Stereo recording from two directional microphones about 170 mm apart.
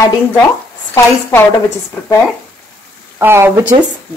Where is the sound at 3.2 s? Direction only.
15° right (ahead or behind).